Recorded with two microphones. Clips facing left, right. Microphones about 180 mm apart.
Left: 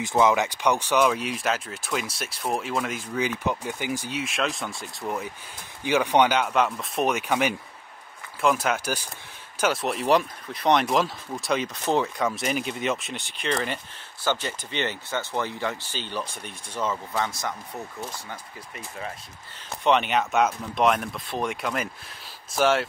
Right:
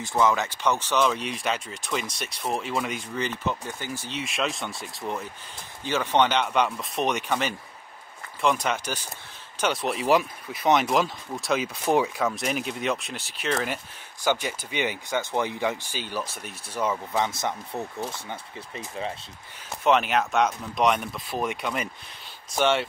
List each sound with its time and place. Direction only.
0.0 s speech: 20° left (ahead or behind)
4.2 s speech: centre (ahead or behind); by 19.1 s 25° right (ahead or behind)
19.8 s speech: centre (ahead or behind)